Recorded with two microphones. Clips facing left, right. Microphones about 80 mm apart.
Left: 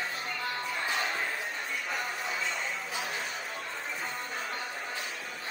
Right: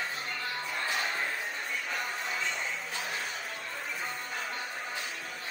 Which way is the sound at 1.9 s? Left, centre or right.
Centre.